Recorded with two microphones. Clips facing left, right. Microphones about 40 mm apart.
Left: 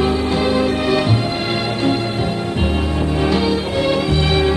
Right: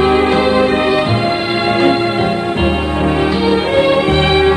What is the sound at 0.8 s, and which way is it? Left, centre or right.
Music, right.